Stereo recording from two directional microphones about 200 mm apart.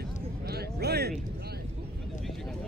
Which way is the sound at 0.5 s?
50° right (ahead or behind).